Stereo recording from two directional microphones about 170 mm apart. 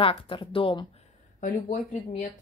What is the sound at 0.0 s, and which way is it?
Speech, 30° left (ahead or behind).